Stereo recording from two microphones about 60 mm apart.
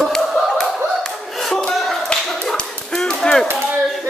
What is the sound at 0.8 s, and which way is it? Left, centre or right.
Clapping, centre.